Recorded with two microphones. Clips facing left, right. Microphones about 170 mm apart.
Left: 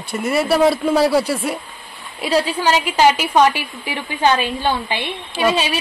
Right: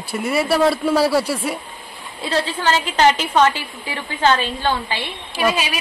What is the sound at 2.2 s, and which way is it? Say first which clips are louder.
A woman's voice: left 4 dB; 15° left (ahead or behind).